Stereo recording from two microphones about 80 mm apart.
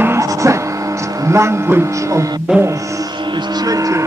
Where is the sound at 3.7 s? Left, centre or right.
Right.